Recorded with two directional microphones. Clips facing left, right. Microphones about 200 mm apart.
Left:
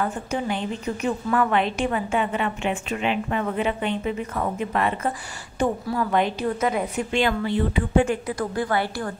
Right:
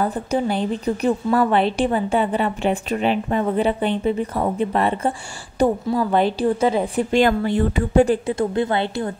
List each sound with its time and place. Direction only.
0.0 s a woman's voice: 35° right (ahead or behind)